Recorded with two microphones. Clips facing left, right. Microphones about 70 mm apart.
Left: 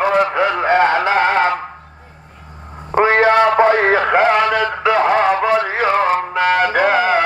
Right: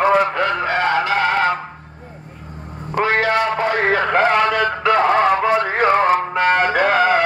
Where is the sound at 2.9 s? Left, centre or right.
Left.